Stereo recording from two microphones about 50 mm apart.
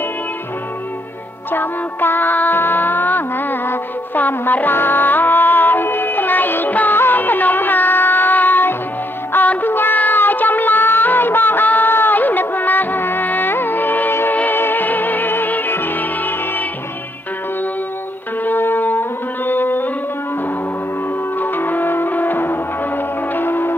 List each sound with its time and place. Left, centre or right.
1.5 s music: left
14.3 s music: left
18.4 s music: left
21.4 s music: left